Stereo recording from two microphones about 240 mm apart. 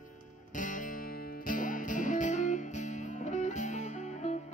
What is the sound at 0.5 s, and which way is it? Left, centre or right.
Music, left.